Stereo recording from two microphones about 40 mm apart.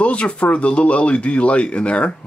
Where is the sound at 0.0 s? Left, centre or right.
Left.